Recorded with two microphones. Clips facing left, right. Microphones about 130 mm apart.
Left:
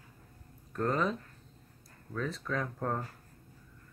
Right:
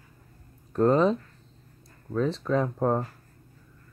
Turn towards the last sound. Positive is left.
turn(degrees=-30)  # may be behind; listen again after turning